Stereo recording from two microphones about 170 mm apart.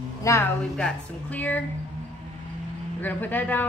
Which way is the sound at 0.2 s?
15° left (ahead or behind).